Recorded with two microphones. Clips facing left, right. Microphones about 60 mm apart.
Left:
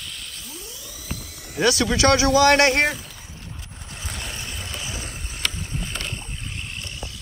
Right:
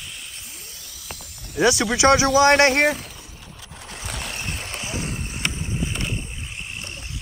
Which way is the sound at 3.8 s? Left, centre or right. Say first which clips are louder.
Right 2 dB; right.